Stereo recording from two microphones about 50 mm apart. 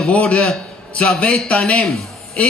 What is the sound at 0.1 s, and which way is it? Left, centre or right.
A man's voice, left.